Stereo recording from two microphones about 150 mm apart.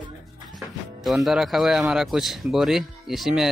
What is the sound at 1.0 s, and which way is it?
Speech, centre (ahead or behind).